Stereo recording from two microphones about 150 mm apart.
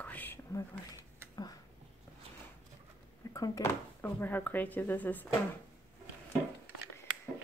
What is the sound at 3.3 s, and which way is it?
Speech, 25° left (ahead or behind).